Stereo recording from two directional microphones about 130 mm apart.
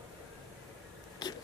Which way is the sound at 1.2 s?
30° left (ahead or behind).